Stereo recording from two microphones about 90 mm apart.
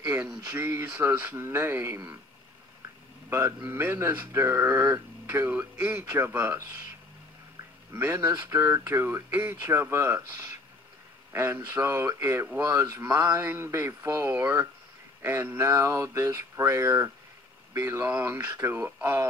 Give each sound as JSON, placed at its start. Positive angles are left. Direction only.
{"t": 0.0, "sound": "a sound", "side_deg": -15}
{"t": 0.5, "sound": "speech", "side_deg": -25}
{"t": 3.3, "sound": "speech", "side_deg": -30}
{"t": 7.9, "sound": "speech", "side_deg": -25}